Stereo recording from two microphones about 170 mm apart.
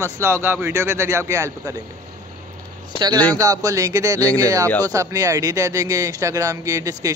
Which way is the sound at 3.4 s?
20° right (ahead or behind).